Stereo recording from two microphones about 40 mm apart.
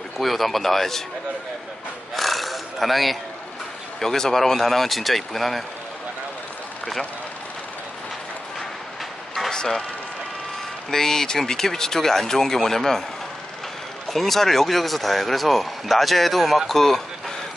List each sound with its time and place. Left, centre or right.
0.2 s speech: centre
2.1 s a sound: centre
4.0 s speech: centre
9.5 s speech: centre
10.9 s speech: centre
14.1 s speech: centre